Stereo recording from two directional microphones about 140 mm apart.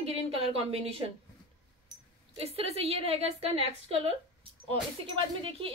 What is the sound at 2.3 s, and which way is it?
A woman's voice, 45° right (ahead or behind).